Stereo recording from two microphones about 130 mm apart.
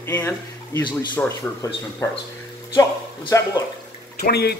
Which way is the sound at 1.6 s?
25° left (ahead or behind).